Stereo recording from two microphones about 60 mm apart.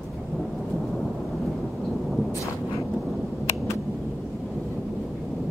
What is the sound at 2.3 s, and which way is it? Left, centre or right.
Thunder, left.